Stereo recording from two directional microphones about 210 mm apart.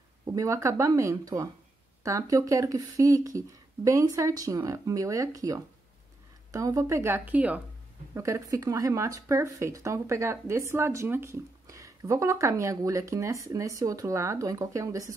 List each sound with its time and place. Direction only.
0.2 s speech: 15° right (ahead or behind)